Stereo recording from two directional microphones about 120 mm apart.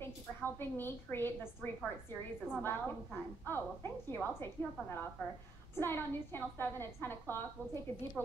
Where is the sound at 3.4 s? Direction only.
20° left (ahead or behind).